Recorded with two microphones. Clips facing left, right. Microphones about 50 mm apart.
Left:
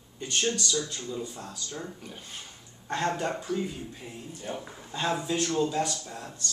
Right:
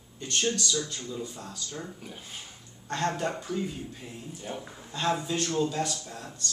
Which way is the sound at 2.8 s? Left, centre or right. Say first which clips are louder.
Left 1 dB; centre.